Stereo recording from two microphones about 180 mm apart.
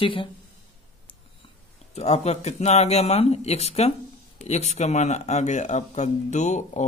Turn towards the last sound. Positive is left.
turn(degrees=40)  # may be behind; listen again after turning